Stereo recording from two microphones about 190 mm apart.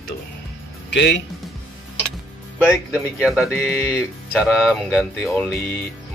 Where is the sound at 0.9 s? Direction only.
65° left (ahead or behind).